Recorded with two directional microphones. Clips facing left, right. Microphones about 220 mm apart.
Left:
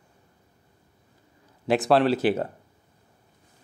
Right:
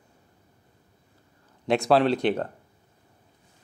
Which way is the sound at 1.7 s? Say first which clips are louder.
Even; centre (ahead or behind).